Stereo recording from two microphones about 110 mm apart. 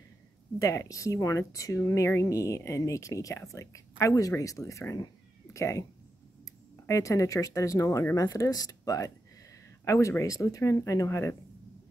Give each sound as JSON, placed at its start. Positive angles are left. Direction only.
{"t": 0.6, "sound": "speech", "side_deg": 30}
{"t": 6.9, "sound": "speech", "side_deg": 30}